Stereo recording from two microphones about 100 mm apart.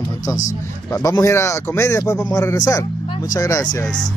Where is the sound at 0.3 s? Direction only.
30° left (ahead or behind).